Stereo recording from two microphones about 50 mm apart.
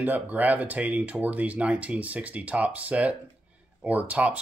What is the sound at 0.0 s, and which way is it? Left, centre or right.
Speech, right.